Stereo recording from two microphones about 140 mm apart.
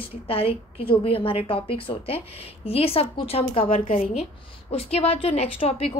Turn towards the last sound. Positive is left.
turn(degrees=45)  # may be behind; listen again after turning